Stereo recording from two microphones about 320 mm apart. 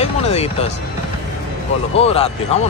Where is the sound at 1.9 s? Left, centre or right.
Centre.